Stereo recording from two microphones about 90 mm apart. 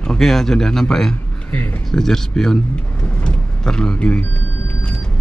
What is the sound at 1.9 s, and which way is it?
Speech, 5° left (ahead or behind).